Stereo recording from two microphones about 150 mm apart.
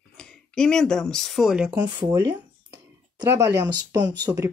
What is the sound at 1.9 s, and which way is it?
Speech, 30° right (ahead or behind).